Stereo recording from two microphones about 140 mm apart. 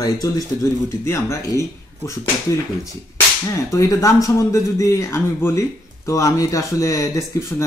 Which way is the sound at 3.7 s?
20° left (ahead or behind).